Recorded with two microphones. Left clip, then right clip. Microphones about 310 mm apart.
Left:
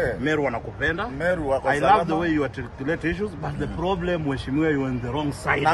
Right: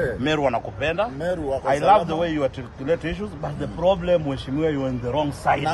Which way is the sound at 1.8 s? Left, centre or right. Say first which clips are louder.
Right 2 dB; centre.